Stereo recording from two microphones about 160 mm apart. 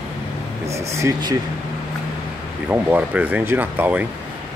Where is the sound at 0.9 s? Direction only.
20° right (ahead or behind).